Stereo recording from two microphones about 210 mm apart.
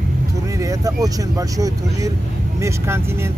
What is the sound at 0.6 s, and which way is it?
Speech, 15° right (ahead or behind).